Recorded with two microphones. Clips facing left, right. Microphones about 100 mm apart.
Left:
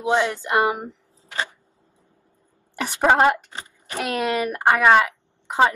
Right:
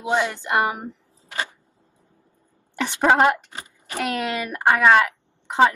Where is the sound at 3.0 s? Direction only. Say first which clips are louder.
Even; centre (ahead or behind).